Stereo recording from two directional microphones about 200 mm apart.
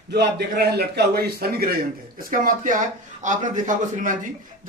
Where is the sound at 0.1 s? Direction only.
55° right (ahead or behind).